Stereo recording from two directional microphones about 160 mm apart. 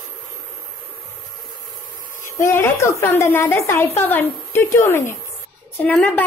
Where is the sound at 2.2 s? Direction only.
15° left (ahead or behind).